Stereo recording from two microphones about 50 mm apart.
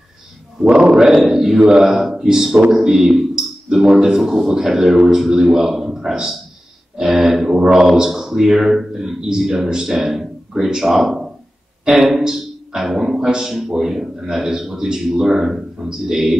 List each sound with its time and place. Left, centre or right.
0.7 s a man's voice: right
0.9 s a man's voice: centre